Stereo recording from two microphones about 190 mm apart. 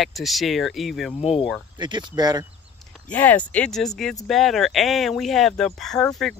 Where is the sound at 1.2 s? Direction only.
30° left (ahead or behind).